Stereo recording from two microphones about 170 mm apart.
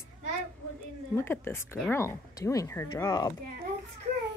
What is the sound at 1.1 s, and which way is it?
A woman's voice, 15° left (ahead or behind).